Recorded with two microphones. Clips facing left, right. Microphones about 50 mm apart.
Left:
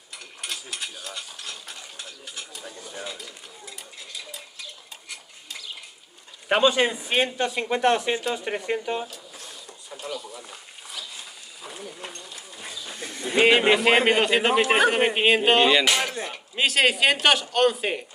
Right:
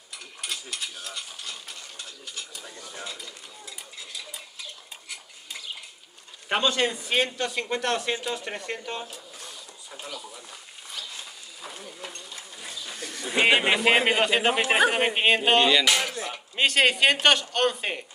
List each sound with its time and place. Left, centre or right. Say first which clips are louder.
0.4 s mechanisms: even; centre
1.7 s ratchet: left 1 dB; centre
2.5 s speech: left 2 dB; centre
6.5 s speech: left 4 dB; centre
9.1 s printer: even; centre
10.0 s a sound: left 6 dB; centre
12.5 s a sound: left 1 dB; centre
13.0 s speech: left 3 dB; left
13.3 s a man's voice: left 3 dB; centre
16.0 s speech: left 2 dB; left
16.3 s a man's voice: even; centre